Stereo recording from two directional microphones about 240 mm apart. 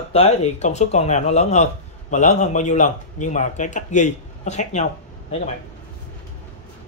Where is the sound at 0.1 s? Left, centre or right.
Left.